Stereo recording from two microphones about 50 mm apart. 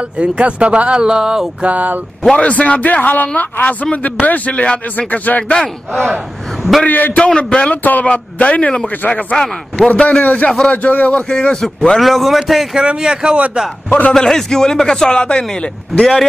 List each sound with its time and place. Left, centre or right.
0.2 s speech: right
1.6 s speech: right
2.3 s speech: left
5.5 s speech: centre
6.0 s speech: centre
6.9 s speech: left
7.2 s a man's voice: centre
7.7 s a man's voice: left; by 11.6 s centre
11.6 s a man's voice: centre
12.8 s speech: centre
13.8 s a man's voice: left
14.1 s speech: centre